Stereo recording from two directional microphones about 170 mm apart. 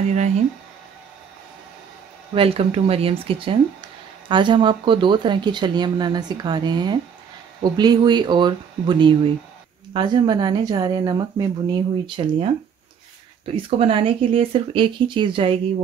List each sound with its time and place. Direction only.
2.3 s speech: 35° right (ahead or behind)
13.6 s speech: 35° right (ahead or behind)